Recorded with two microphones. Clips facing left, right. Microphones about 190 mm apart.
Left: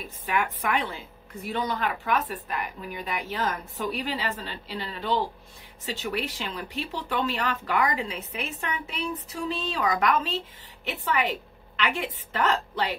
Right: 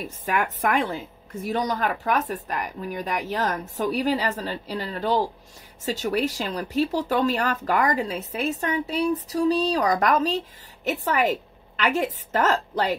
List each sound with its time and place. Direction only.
0.0 s speech: 45° right (ahead or behind)